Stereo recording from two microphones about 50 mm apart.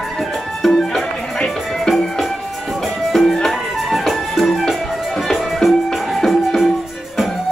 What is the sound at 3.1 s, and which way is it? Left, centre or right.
Music, centre.